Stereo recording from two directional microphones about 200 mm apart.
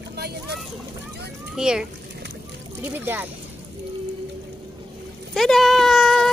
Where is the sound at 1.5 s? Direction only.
5° right (ahead or behind).